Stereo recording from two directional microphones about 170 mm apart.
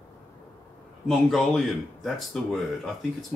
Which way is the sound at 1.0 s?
Centre (ahead or behind).